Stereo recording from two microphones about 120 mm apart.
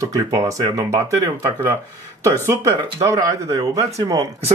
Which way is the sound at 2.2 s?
25° right (ahead or behind).